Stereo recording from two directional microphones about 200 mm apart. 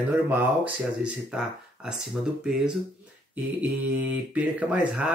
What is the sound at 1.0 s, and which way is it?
Speech, 5° right (ahead or behind).